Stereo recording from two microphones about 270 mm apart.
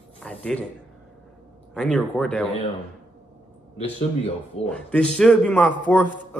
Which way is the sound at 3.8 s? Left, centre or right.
Left.